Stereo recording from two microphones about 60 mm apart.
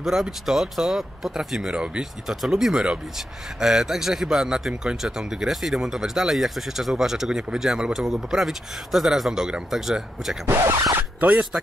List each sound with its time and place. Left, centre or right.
0.0 s a man's voice: centre
10.6 s speech: right
11.0 s speech: right